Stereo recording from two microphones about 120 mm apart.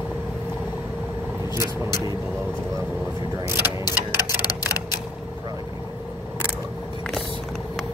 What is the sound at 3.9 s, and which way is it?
Tick-tock, 30° left (ahead or behind).